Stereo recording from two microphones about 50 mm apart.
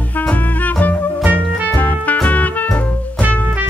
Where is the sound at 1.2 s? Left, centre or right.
Right.